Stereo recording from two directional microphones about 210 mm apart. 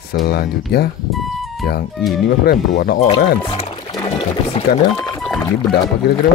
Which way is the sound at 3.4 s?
25° left (ahead or behind).